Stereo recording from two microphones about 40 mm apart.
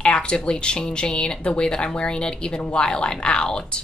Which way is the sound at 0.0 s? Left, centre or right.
Left.